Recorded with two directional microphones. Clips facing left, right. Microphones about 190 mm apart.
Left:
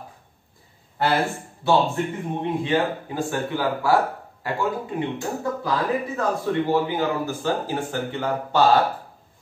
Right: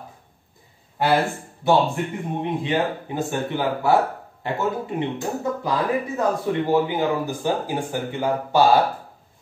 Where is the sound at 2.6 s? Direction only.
20° right (ahead or behind).